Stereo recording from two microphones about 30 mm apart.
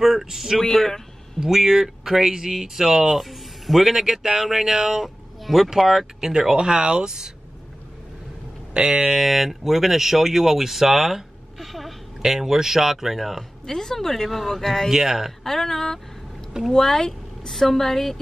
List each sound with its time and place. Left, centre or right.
0.0 s speech: centre
0.6 s a woman's voice: centre
1.4 s speech: centre
6.5 s speech: right
8.7 s speech: right
9.2 s speech: centre
11.5 s speech: centre
12.2 s speech: centre
13.7 s a woman's voice: centre
14.6 s a woman's voice: centre
14.9 s speech: centre
15.4 s a woman's voice: centre